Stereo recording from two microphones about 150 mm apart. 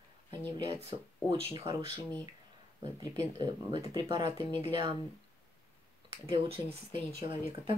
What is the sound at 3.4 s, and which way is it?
Speech, 30° right (ahead or behind).